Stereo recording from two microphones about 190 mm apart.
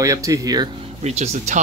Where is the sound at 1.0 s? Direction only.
35° right (ahead or behind).